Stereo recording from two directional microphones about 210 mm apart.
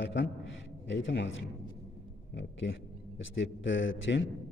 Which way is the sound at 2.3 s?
60° left (ahead or behind).